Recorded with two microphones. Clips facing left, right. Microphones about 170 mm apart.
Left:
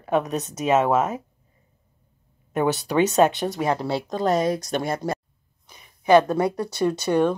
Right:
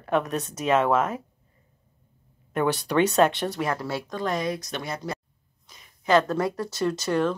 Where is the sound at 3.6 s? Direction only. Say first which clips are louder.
Left 6 dB; 25° left (ahead or behind); by 5.2 s 50° left (ahead or behind).